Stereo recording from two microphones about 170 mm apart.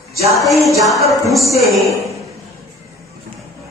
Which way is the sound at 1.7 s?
20° right (ahead or behind).